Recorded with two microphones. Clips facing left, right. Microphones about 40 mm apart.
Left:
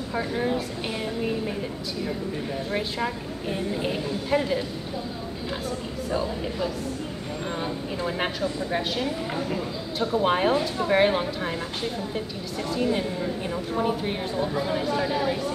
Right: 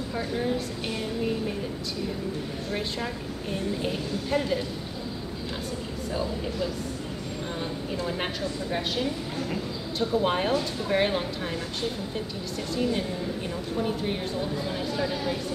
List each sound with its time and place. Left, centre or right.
0.1 s a woman's voice: centre
3.8 s a woman's voice: centre
8.2 s a woman's voice: centre